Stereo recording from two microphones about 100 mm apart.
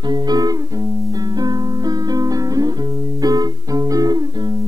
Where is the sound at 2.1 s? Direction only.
40° right (ahead or behind).